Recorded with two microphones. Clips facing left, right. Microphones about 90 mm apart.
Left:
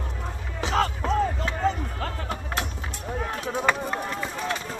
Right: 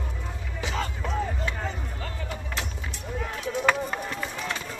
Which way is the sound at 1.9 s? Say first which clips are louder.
Left 4 dB; 65° left (ahead or behind).